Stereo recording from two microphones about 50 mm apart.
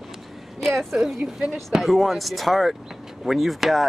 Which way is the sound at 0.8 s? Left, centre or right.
Centre.